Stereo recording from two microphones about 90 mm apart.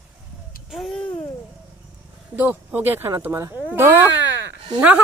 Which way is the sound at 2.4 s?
20° right (ahead or behind).